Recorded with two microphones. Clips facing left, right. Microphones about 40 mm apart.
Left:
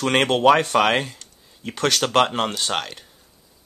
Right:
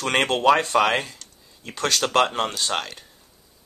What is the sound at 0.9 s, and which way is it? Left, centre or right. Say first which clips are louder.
Speech: left 2 dB; left.